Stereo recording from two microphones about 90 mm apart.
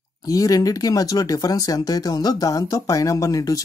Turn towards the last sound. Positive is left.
turn(degrees=40)  # may be behind; listen again after turning